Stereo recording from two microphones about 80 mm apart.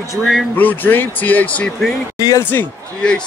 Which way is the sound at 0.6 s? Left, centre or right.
Left.